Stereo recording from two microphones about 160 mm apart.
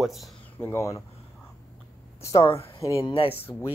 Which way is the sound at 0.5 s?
15° left (ahead or behind).